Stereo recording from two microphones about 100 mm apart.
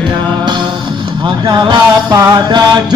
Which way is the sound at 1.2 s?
50° right (ahead or behind).